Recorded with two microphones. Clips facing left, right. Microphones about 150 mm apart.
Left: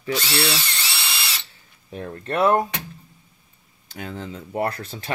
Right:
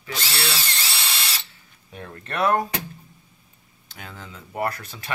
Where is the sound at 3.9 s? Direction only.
35° left (ahead or behind).